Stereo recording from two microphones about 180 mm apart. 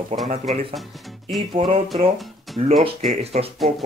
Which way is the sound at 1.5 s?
30° right (ahead or behind).